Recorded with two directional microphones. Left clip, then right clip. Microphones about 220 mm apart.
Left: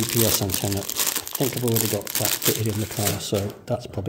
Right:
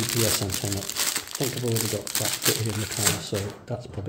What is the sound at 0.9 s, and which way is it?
Speech, 10° left (ahead or behind).